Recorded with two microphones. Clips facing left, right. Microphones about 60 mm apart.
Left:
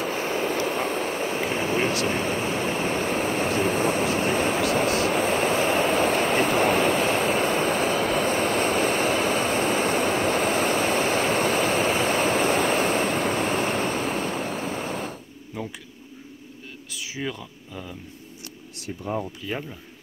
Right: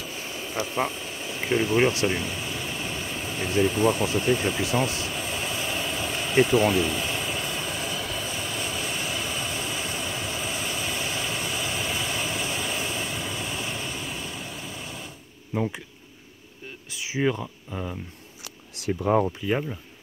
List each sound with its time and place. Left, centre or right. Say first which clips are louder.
0.0 s vehicle: left 10 dB; left
0.8 s speech: left 7 dB; left
2.0 s vehicle: left 3 dB; left
15.5 s speech: right 6 dB; right
16.9 s speech: right 6 dB; right
18.9 s speech: right 7 dB; right
19.4 s speech: right 5 dB; centre